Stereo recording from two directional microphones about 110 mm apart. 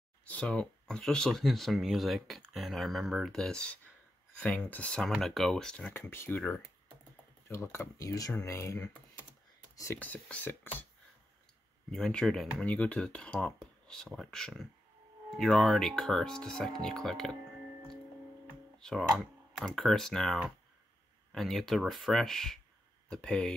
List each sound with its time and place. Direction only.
0.3 s speech: 10° left (ahead or behind)
5.9 s speech: 20° left (ahead or behind)
9.9 s speech: 15° left (ahead or behind)
11.9 s speech: 5° left (ahead or behind)
18.8 s speech: 5° left (ahead or behind)